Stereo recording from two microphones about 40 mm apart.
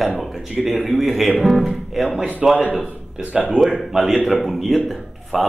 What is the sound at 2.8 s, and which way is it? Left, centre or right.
Speech, right.